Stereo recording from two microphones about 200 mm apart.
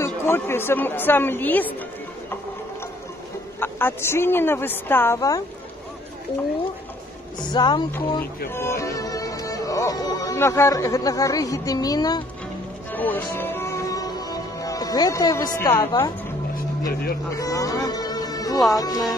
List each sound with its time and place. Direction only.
0.0 s speech: 10° left (ahead or behind)
3.5 s speech: 10° left (ahead or behind)
7.5 s speech: 20° left (ahead or behind)
12.9 s music: 10° left (ahead or behind)
15.6 s speech: 15° left (ahead or behind)
16.8 s speech: 50° left (ahead or behind)
17.4 s speech: 15° left (ahead or behind)